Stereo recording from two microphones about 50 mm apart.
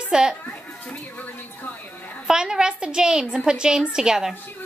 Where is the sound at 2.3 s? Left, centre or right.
Centre.